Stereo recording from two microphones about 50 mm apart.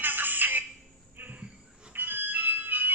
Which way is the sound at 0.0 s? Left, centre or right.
Right.